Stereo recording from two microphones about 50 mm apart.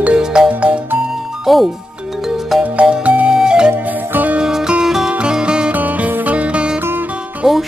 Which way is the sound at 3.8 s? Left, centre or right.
Right.